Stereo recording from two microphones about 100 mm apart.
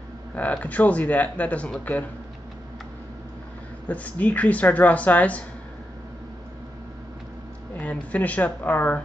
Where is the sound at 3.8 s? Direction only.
15° left (ahead or behind).